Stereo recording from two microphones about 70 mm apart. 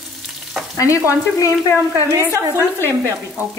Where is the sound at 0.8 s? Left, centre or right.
Left.